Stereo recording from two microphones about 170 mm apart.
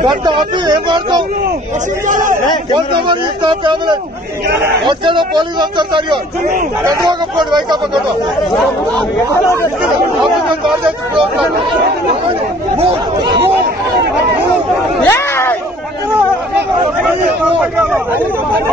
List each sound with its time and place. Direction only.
0.0 s a man's voice: 30° right (ahead or behind)
2.0 s a man's voice: 50° right (ahead or behind)
2.7 s a man's voice: 30° right (ahead or behind)
9.3 s speech: 15° left (ahead or behind)
15.0 s a sound: 15° left (ahead or behind)